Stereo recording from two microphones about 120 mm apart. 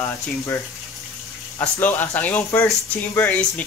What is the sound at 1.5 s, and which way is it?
Speech, 15° left (ahead or behind).